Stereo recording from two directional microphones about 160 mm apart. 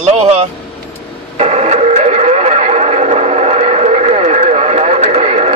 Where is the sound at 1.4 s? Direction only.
40° right (ahead or behind).